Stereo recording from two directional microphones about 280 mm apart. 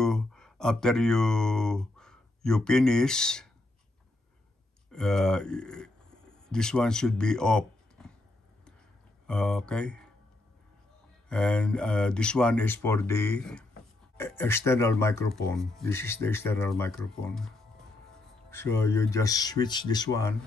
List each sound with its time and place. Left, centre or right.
0.0 s speech: centre
4.9 s speech: centre
9.3 s speech: centre
11.2 s speech: centre